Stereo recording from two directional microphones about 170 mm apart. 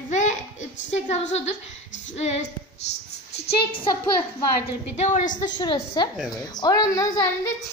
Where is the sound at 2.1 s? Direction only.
40° left (ahead or behind).